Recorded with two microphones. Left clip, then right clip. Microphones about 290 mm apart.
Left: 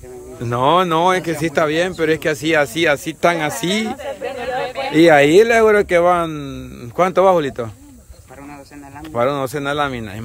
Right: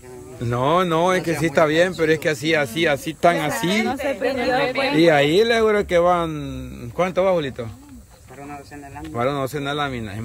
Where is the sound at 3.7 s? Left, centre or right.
Right.